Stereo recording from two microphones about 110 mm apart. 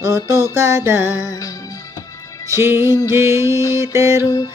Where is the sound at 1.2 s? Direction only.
30° left (ahead or behind).